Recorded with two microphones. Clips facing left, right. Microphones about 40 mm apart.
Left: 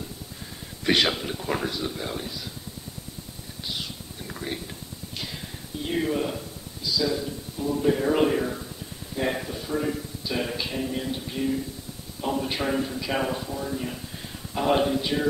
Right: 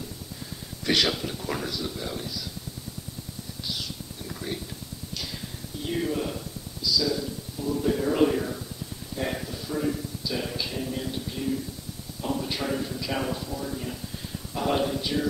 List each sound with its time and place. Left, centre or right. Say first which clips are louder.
0.8 s a man's voice: left 2 dB; left
5.9 s a sound: left 2 dB; left
9.1 s music: left 4 dB; left
12.2 s a man's voice: left 2 dB; left